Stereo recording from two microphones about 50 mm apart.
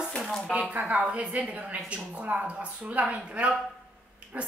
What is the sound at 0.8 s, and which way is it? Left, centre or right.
A woman's voice, right.